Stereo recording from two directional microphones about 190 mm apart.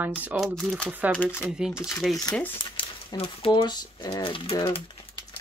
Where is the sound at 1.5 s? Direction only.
5° right (ahead or behind).